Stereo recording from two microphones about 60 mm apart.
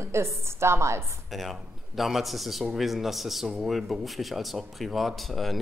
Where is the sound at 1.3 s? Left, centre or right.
Centre.